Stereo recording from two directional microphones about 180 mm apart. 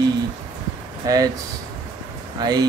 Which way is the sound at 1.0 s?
20° right (ahead or behind).